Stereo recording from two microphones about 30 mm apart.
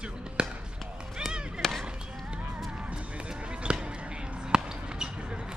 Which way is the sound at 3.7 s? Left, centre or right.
Right.